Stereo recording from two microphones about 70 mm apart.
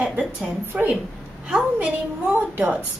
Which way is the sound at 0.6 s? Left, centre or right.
Right.